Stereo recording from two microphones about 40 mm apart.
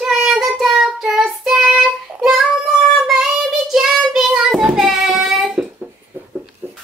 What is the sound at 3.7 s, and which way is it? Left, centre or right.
Child singing, centre.